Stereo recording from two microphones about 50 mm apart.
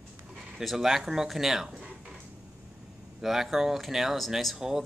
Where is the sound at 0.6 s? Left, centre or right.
Centre.